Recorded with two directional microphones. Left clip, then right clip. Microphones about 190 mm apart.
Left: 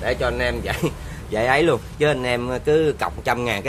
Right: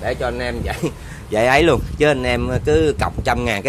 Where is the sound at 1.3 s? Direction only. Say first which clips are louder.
Right 4 dB; 30° right (ahead or behind).